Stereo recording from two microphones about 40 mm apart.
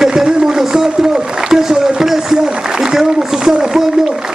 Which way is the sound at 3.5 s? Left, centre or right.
Centre.